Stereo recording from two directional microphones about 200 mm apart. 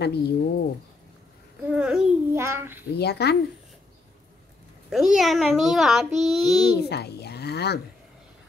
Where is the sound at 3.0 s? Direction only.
55° left (ahead or behind).